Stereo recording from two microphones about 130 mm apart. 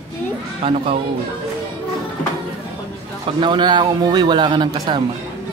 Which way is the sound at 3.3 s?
35° right (ahead or behind).